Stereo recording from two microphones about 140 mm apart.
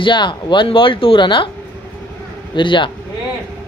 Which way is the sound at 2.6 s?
35° left (ahead or behind).